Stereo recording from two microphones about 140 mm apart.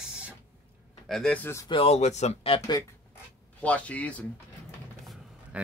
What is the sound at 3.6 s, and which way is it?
Speech, 10° left (ahead or behind).